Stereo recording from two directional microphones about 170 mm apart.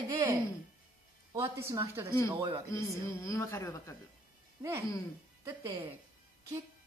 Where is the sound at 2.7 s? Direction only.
20° left (ahead or behind).